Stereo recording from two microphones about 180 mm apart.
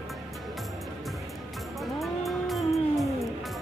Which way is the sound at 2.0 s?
Centre (ahead or behind).